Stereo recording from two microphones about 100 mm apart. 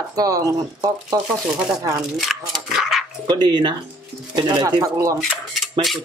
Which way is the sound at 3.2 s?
50° right (ahead or behind).